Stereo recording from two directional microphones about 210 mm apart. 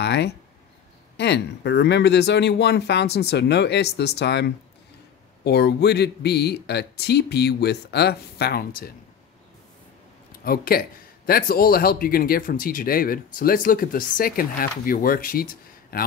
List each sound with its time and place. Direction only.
0.0 s speech: 55° left (ahead or behind)
10.4 s speech: 45° left (ahead or behind)